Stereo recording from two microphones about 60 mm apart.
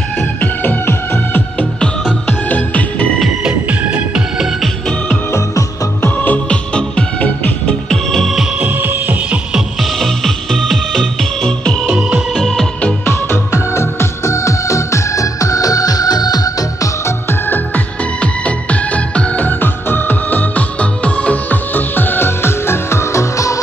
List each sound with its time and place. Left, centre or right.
0.2 s music: left
3.6 s music: right
6.0 s music: left
7.9 s music: centre
8.5 s music: right
9.8 s music: centre
11.8 s music: centre
13.0 s music: left
17.5 s music: left
19.4 s music: left